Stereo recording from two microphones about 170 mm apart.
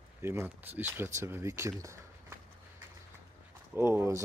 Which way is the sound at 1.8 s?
15° right (ahead or behind).